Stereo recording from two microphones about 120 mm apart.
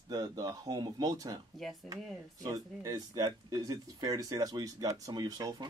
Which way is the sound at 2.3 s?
30° right (ahead or behind).